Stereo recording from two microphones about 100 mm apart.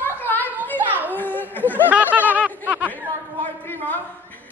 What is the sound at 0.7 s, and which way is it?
Children playing, 15° right (ahead or behind).